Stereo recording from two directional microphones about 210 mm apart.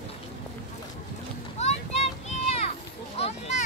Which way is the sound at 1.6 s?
30° left (ahead or behind).